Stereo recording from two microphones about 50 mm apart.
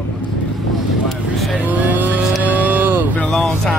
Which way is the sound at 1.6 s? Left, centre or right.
Right.